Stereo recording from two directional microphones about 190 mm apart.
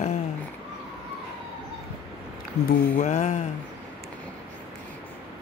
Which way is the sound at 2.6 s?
35° left (ahead or behind).